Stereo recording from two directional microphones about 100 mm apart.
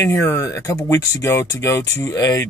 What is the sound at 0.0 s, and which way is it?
Speech, 30° left (ahead or behind).